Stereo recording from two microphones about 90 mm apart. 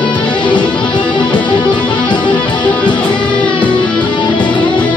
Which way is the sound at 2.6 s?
15° left (ahead or behind).